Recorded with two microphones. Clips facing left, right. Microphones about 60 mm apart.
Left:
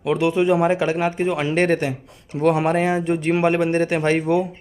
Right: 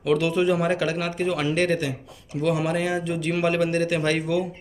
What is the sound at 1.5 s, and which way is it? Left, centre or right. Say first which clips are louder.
Speech: left 4 dB; left.